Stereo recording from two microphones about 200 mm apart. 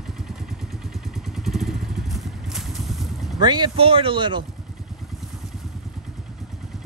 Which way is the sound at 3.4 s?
20° right (ahead or behind).